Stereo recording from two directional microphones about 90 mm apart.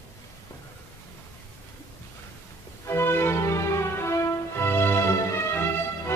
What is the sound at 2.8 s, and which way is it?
Music, 25° left (ahead or behind).